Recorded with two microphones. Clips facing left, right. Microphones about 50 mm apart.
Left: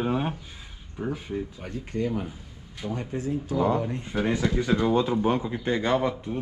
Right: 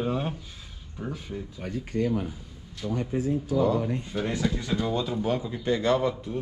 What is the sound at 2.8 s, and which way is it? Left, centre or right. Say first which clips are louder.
Speech: right 1 dB; left.